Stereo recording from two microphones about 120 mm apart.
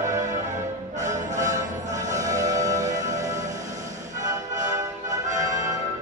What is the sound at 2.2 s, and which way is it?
Music, 30° right (ahead or behind).